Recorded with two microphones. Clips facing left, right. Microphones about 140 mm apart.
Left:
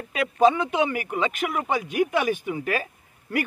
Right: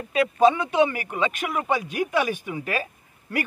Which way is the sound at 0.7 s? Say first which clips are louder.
Right 3 dB; 10° left (ahead or behind).